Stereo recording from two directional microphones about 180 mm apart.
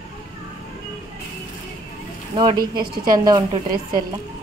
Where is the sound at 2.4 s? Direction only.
25° right (ahead or behind).